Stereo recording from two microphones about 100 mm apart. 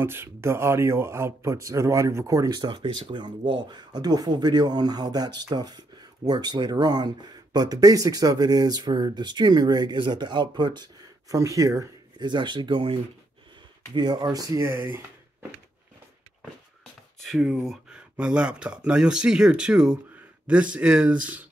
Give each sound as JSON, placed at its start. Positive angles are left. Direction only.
{"t": 0.0, "sound": "speech", "side_deg": -25}
{"t": 2.7, "sound": "speech", "side_deg": -55}
{"t": 12.2, "sound": "speech", "side_deg": -50}
{"t": 13.9, "sound": "speech", "side_deg": -45}
{"t": 17.4, "sound": "speech", "side_deg": -10}